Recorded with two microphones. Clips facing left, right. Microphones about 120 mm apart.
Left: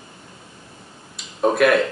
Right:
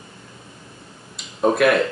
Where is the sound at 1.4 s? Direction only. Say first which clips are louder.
Even; centre (ahead or behind).